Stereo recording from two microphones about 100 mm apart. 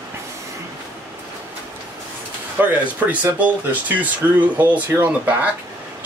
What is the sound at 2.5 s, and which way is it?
Speech, 20° right (ahead or behind).